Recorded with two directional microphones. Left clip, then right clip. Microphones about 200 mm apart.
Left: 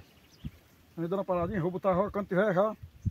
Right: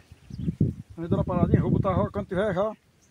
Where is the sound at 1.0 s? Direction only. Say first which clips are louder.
Right 2 dB; 10° left (ahead or behind).